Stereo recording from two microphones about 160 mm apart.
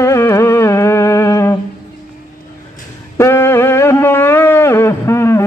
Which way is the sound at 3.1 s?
15° left (ahead or behind).